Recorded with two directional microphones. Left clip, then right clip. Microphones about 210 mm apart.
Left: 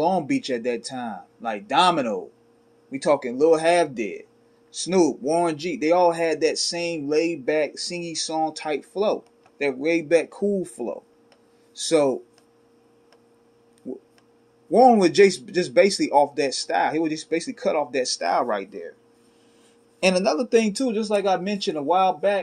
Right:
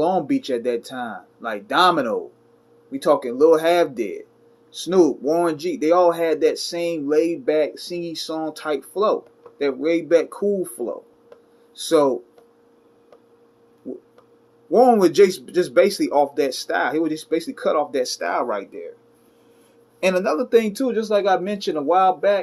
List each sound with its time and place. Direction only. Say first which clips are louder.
0.0 s speech: right 2 dB; 35° left (ahead or behind)
14.7 s speech: right 1 dB; 35° left (ahead or behind)
20.0 s speech: right 1 dB; 35° left (ahead or behind)